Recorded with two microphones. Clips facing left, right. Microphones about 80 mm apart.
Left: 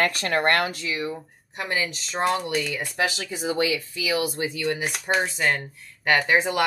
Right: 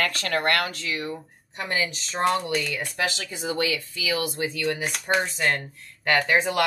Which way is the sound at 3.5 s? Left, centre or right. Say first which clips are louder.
Left 2 dB; centre.